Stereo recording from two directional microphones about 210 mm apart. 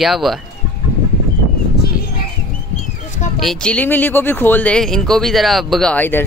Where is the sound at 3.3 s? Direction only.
Centre (ahead or behind).